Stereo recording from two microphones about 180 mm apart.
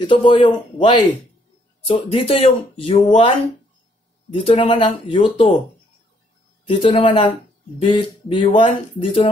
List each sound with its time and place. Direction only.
0.0 s speech: 25° left (ahead or behind)
6.6 s speech: 35° left (ahead or behind)